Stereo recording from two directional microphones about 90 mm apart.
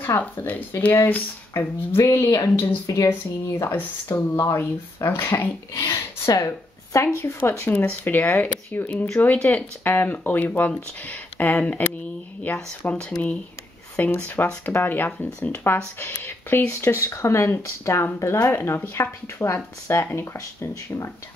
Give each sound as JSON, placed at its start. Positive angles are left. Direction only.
{"t": 0.0, "sound": "speech", "side_deg": 25}
{"t": 1.5, "sound": "speech", "side_deg": 35}
{"t": 7.6, "sound": "speech", "side_deg": 15}